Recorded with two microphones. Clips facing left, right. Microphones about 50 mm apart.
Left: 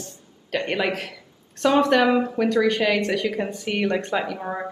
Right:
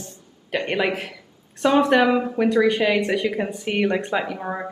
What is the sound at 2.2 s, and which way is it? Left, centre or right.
A woman's voice, centre.